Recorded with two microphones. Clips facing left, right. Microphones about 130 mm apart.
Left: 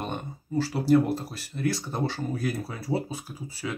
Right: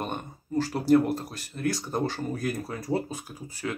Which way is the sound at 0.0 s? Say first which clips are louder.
Even; 5° right (ahead or behind).